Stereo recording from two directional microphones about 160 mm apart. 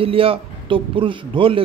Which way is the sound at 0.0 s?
35° right (ahead or behind).